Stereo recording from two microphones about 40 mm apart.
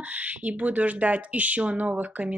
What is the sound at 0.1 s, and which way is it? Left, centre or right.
Speech, right.